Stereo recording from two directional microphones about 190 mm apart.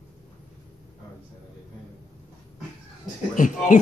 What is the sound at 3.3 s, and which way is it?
Speech, 45° left (ahead or behind).